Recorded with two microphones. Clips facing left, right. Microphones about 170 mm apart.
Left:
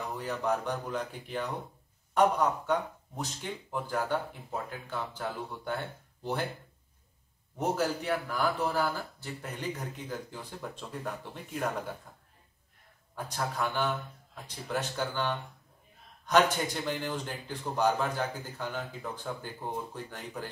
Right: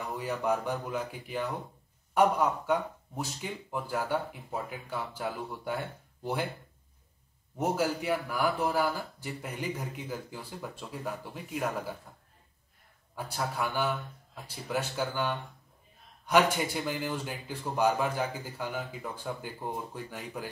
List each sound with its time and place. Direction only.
0.2 s speech: 10° right (ahead or behind)
7.5 s speech: 10° right (ahead or behind)
13.1 s speech: 10° right (ahead or behind)